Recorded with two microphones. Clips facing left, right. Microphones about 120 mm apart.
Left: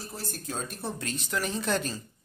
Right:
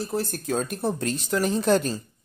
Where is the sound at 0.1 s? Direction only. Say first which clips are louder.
Right 10 dB; 65° right (ahead or behind).